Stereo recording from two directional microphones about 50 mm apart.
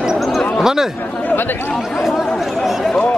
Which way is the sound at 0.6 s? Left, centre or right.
Centre.